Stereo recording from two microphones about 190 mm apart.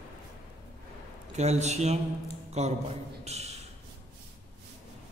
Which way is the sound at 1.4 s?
35° right (ahead or behind).